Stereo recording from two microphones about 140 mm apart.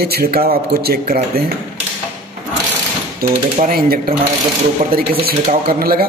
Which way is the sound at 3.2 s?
90° right.